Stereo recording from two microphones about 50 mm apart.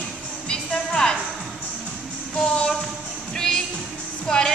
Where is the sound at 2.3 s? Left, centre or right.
Centre.